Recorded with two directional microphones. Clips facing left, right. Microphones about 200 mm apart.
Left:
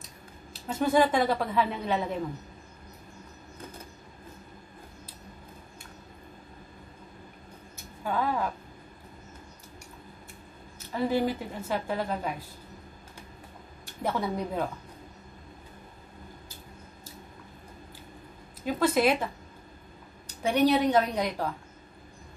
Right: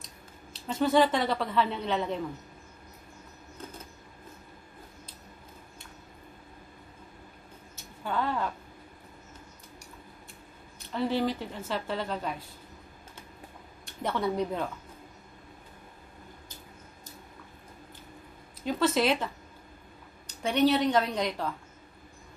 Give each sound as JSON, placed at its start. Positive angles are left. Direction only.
{"t": 0.0, "sound": "speech", "side_deg": 10}
{"t": 8.0, "sound": "speech", "side_deg": 10}
{"t": 10.9, "sound": "speech", "side_deg": 10}
{"t": 13.8, "sound": "speech", "side_deg": 10}
{"t": 18.8, "sound": "speech", "side_deg": 10}
{"t": 20.4, "sound": "speech", "side_deg": 10}